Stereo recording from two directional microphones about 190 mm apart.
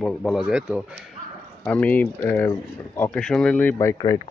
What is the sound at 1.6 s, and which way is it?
Speech, 5° left (ahead or behind).